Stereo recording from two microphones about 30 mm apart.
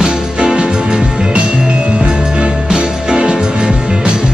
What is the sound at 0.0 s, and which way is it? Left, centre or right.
Music, right.